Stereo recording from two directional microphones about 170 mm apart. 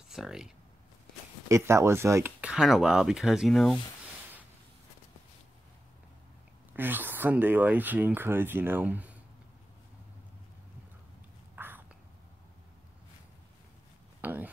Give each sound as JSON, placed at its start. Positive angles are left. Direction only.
{"t": 0.1, "sound": "speech", "side_deg": 0}
{"t": 1.5, "sound": "speech", "side_deg": -15}
{"t": 2.4, "sound": "speech", "side_deg": -5}
{"t": 6.7, "sound": "speech", "side_deg": -10}
{"t": 11.5, "sound": "whispering", "side_deg": -10}
{"t": 14.2, "sound": "a sound", "side_deg": -10}